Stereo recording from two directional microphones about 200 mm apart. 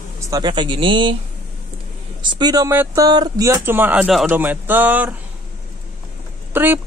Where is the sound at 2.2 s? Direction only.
20° right (ahead or behind).